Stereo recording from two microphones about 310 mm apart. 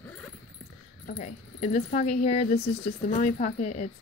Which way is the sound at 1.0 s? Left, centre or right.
Left.